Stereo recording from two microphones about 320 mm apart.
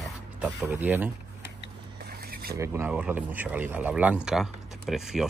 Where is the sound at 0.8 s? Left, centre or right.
Centre.